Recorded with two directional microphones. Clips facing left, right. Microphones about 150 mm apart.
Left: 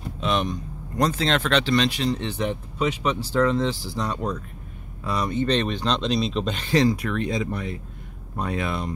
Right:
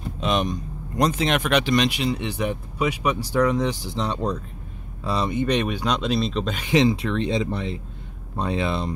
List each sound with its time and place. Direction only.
0.2 s speech: 15° right (ahead or behind)
5.3 s speech: 10° right (ahead or behind)
6.6 s speech: 20° right (ahead or behind)